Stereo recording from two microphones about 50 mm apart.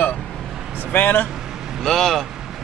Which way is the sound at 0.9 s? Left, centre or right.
Left.